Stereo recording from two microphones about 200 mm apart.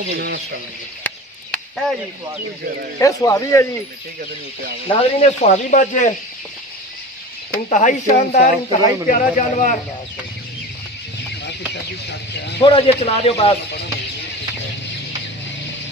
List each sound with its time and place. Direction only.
0.1 s speech: 55° right (ahead or behind)
1.0 s chop: 5° left (ahead or behind)
3.0 s speech: 15° left (ahead or behind)
4.8 s speech: 30° left (ahead or behind)
7.7 s speech: 35° left (ahead or behind)
12.6 s a man's voice: 30° left (ahead or behind)